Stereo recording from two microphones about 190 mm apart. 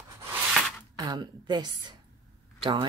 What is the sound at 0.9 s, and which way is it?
A woman's voice, 20° right (ahead or behind).